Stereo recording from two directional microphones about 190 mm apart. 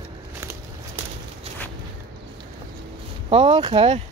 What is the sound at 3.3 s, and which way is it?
Speech, 30° right (ahead or behind).